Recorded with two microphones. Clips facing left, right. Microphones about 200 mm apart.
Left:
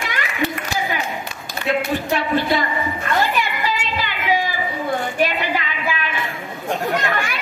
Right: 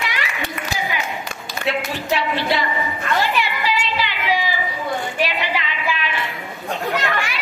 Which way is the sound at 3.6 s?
50° left (ahead or behind).